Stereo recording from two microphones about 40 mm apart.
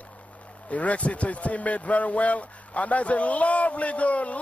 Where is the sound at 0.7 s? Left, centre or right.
Left.